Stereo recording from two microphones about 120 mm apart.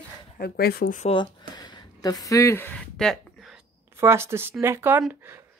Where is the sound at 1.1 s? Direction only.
40° left (ahead or behind); by 2.8 s 20° left (ahead or behind).